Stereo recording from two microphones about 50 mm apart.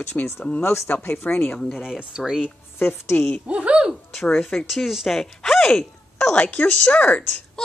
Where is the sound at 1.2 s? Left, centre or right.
Left.